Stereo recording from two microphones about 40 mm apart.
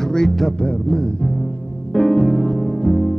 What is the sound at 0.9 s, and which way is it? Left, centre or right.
Speech, centre.